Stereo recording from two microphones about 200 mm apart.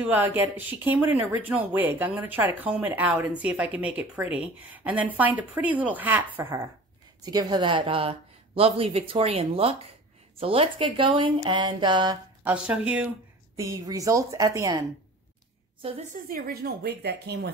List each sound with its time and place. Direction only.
0.0 s a woman's voice: 10° right (ahead or behind)
12.4 s speech: 5° right (ahead or behind)
13.6 s speech: 15° right (ahead or behind)
15.8 s a woman's voice: 30° right (ahead or behind)
16.3 s speech: 50° right (ahead or behind)